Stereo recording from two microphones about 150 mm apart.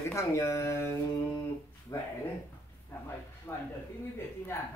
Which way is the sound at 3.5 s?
15° left (ahead or behind).